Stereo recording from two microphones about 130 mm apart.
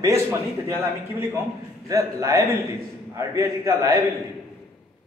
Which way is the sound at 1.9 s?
25° right (ahead or behind).